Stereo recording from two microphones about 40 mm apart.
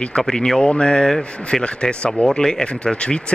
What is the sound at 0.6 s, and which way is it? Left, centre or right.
Speech, centre.